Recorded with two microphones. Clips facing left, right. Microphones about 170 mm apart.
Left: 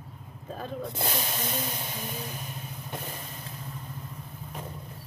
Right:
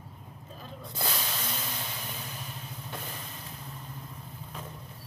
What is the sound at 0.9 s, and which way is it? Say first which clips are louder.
Spray: left 3 dB; 25° left (ahead or behind).